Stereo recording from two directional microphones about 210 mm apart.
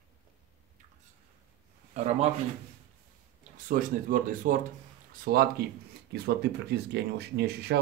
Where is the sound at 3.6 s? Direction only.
40° right (ahead or behind).